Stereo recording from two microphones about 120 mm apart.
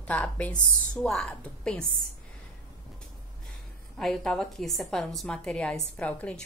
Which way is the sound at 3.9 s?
5° left (ahead or behind).